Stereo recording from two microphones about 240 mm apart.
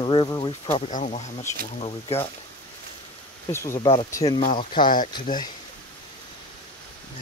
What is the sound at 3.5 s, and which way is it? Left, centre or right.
Speech, centre.